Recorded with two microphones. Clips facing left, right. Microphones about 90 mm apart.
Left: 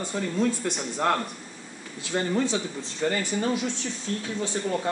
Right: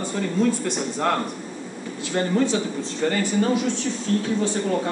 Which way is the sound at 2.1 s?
15° left (ahead or behind).